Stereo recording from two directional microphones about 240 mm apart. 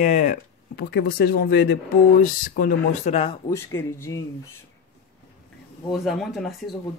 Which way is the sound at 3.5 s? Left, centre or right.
Centre.